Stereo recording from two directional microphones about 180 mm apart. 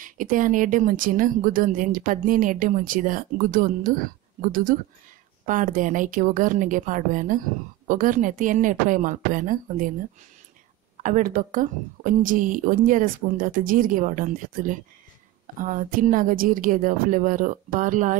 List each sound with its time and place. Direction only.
0.0 s a woman's voice: 50° right (ahead or behind)
11.0 s a woman's voice: 45° right (ahead or behind)